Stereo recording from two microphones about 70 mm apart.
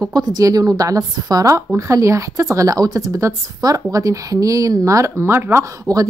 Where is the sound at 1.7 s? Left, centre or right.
Right.